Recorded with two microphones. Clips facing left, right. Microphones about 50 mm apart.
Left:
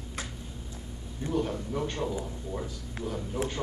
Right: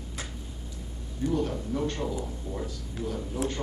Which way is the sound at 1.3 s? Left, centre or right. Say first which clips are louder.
Even; centre.